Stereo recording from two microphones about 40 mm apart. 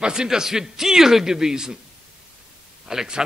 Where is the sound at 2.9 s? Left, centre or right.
Centre.